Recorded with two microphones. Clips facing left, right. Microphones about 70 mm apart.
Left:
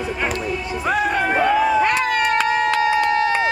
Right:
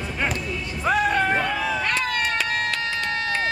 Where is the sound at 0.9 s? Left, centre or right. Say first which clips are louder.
Left 1 dB; centre.